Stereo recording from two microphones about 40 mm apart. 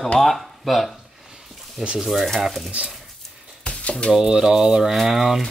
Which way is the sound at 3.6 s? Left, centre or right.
Left.